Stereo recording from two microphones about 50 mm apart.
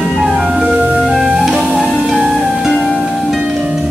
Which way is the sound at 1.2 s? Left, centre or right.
Centre.